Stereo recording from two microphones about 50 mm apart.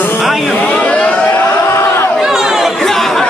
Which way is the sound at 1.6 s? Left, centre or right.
Left.